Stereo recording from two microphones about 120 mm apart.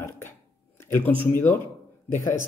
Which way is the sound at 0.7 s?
20° left (ahead or behind).